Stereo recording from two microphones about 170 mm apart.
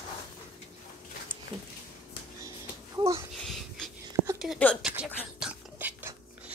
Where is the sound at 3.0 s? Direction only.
20° right (ahead or behind).